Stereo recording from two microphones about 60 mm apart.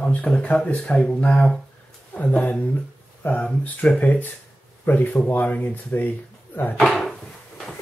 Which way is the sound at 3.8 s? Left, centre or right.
Left.